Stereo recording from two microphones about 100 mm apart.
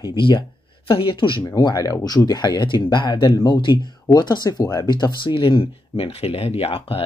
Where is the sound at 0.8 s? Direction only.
60° left (ahead or behind).